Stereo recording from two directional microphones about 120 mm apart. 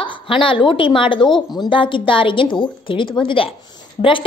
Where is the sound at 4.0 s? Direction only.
75° left (ahead or behind).